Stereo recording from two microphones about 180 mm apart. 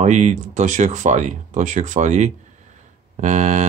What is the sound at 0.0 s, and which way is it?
Speech, 40° right (ahead or behind).